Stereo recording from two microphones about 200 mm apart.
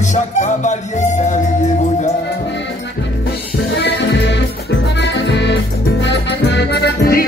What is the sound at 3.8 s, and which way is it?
Music, 60° left (ahead or behind).